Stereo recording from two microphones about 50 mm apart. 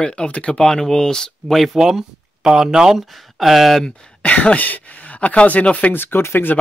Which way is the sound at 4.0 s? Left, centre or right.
Left.